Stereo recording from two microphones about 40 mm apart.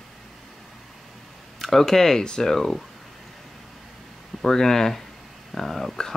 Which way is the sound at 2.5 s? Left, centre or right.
Centre.